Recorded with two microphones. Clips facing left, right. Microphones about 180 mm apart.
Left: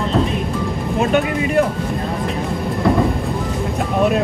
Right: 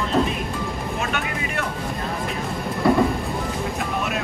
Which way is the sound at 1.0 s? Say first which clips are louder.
Left 13 dB; 35° left (ahead or behind).